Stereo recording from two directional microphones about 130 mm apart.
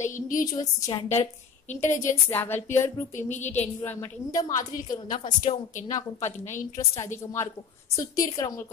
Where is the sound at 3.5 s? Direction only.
15° left (ahead or behind).